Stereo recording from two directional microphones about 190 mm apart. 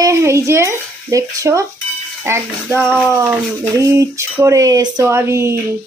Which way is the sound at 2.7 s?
5° left (ahead or behind).